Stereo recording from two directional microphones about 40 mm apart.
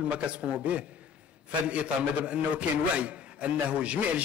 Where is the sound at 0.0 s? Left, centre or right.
Right.